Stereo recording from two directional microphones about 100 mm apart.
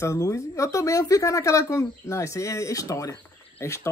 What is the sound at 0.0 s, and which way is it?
Speech, 30° left (ahead or behind).